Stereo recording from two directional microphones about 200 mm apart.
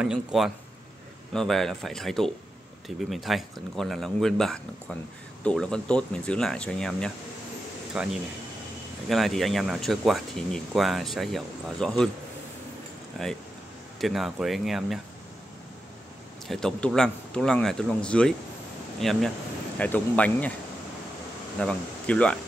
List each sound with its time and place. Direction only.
0.0 s speech: centre (ahead or behind)
9.1 s speech: centre (ahead or behind)
13.2 s speech: centre (ahead or behind)
16.4 s speech: centre (ahead or behind)
21.5 s speech: 5° left (ahead or behind)